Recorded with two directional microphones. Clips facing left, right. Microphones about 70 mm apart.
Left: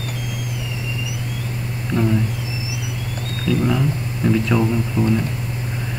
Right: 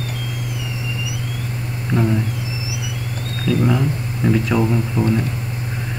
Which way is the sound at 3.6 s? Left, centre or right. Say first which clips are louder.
Right 1 dB; centre.